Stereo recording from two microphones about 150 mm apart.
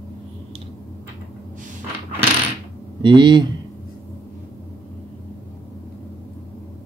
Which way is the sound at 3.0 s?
30° right (ahead or behind).